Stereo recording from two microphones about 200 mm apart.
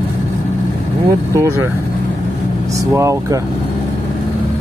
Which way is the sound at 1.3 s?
15° right (ahead or behind).